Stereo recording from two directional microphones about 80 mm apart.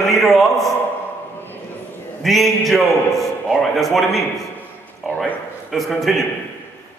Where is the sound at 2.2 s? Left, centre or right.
Centre.